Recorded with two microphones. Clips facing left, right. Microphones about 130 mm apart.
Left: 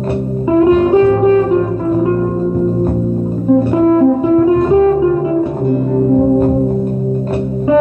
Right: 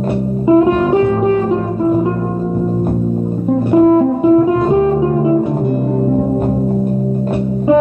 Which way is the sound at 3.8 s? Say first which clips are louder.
Right 1 dB; 25° right (ahead or behind).